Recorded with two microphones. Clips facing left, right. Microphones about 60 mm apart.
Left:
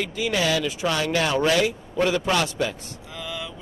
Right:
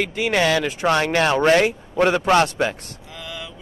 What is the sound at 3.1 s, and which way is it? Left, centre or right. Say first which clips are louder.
Vehicle: left 1 dB; centre.